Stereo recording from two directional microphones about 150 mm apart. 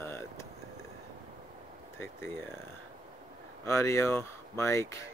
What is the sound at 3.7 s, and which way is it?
Speech, 15° left (ahead or behind).